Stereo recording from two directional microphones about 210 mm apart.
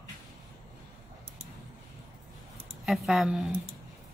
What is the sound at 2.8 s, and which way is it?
Speech, centre (ahead or behind).